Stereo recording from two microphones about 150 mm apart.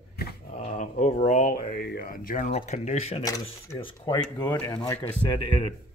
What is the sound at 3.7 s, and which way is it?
Speech, 30° left (ahead or behind).